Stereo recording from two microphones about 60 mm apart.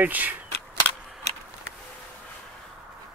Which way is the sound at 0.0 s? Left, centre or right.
Right.